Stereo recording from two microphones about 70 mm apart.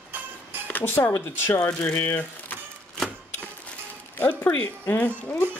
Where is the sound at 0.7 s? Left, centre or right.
Left.